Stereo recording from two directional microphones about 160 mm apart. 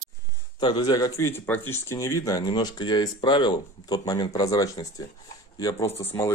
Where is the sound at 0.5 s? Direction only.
30° left (ahead or behind).